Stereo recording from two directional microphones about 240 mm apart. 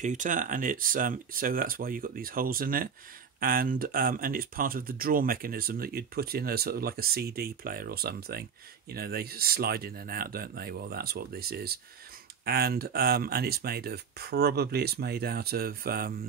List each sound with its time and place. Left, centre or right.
0.0 s speech: right